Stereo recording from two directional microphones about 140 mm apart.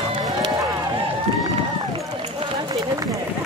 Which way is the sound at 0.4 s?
25° right (ahead or behind).